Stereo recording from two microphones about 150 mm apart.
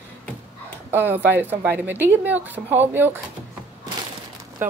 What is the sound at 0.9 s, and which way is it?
A woman's voice, 15° right (ahead or behind).